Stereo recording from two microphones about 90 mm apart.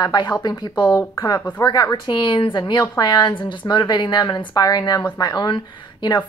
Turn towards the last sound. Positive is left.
turn(degrees=55)  # may be behind; listen again after turning